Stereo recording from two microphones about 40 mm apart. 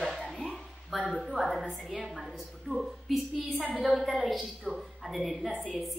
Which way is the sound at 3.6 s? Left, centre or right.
Right.